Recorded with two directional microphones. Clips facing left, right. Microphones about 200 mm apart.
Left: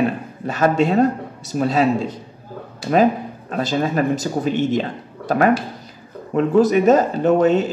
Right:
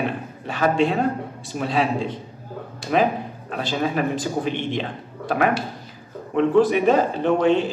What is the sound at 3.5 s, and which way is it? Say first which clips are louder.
Speech: left 4 dB; 45° left (ahead or behind).